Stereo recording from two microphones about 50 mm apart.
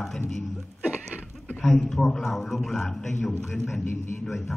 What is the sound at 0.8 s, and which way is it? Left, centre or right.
Goat, right.